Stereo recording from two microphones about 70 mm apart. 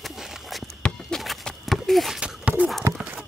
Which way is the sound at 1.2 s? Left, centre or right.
Centre.